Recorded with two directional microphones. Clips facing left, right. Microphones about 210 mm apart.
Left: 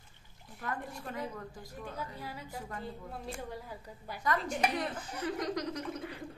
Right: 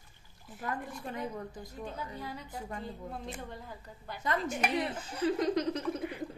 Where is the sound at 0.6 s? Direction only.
20° right (ahead or behind).